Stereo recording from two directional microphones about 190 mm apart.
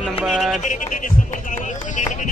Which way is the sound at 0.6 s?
40° left (ahead or behind).